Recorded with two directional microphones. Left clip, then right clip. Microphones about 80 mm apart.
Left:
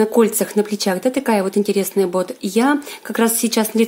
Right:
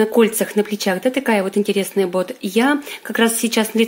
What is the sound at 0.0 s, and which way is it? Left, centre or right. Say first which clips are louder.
Speech: even; centre.